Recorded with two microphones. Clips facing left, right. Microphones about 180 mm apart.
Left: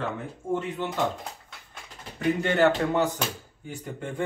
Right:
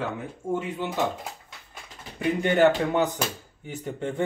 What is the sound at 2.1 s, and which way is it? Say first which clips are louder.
Speech: right 1 dB; 15° right (ahead or behind).